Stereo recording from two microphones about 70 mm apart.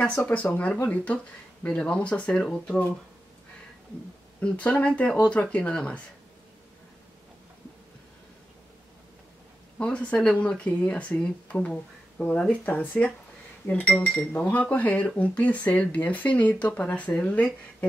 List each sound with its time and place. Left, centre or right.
0.2 s speech: left
4.4 s speech: centre
9.8 s speech: centre
14.3 s speech: left